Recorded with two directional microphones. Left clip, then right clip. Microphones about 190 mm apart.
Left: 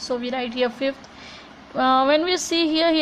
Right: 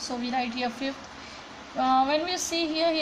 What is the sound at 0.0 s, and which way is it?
Speech, 35° left (ahead or behind).